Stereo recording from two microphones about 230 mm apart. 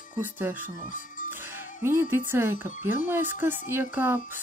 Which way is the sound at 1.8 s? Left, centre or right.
Centre.